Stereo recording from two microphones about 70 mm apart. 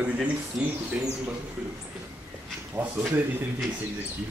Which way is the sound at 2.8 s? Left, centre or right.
Right.